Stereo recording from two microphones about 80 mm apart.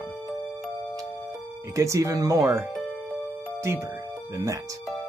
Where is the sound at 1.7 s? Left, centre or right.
Right.